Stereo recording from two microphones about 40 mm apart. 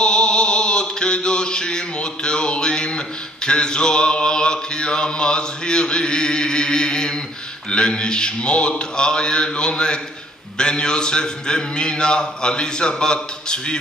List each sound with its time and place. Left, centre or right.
0.0 s mantra: left